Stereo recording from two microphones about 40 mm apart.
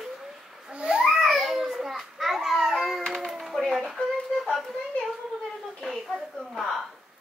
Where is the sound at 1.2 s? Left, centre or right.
Centre.